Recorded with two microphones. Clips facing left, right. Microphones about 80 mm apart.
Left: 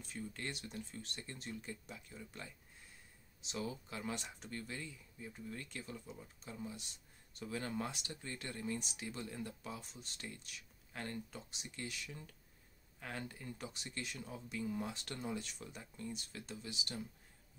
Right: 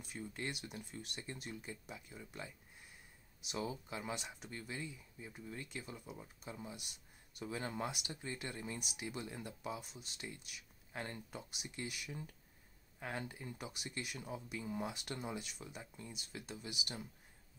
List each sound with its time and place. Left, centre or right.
0.0 s speech: centre
3.5 s speech: centre
4.1 s speech: centre
4.5 s speech: centre
10.9 s speech: right